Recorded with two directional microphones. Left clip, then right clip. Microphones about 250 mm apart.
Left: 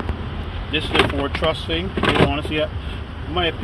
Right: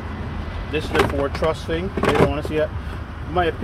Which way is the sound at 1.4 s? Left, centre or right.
Right.